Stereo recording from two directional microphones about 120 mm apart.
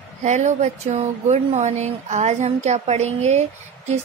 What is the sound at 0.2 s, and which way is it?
Speech, 80° right.